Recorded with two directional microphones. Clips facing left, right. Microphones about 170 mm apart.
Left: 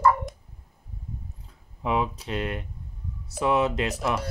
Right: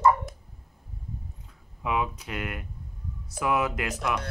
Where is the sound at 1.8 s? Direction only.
30° left (ahead or behind).